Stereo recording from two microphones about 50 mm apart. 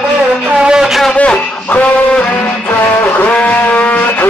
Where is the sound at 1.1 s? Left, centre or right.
Left.